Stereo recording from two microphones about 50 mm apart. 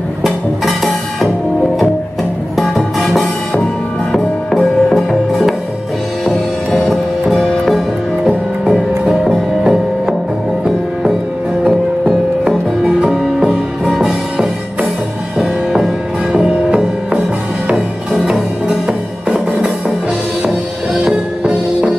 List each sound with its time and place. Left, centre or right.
0.2 s music: centre
2.5 s music: centre
9.1 s music: centre
11.6 s music: centre
17.7 s music: centre
21.0 s music: right